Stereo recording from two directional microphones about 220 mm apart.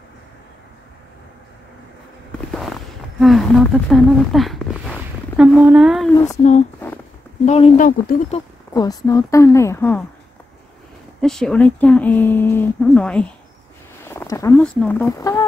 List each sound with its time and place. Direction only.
3.2 s speech: centre (ahead or behind)
5.4 s a sound: 5° right (ahead or behind)
6.1 s speech: 15° left (ahead or behind)
7.4 s speech: 30° left (ahead or behind)
8.7 s speech: 15° left (ahead or behind)
11.1 s speech: centre (ahead or behind)